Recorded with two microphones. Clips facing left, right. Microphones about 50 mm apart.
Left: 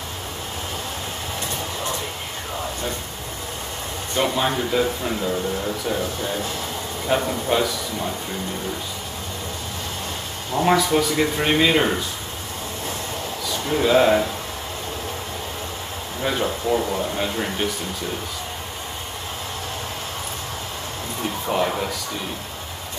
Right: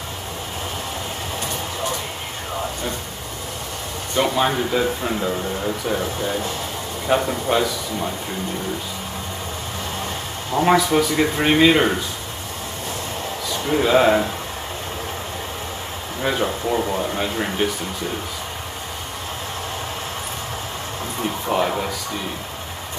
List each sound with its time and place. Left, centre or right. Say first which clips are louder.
4.2 s speech: right 2 dB; centre
10.5 s speech: right 2 dB; centre
13.7 s speech: right 1 dB; centre
16.2 s speech: right 2 dB; centre
21.5 s speech: right 1 dB; centre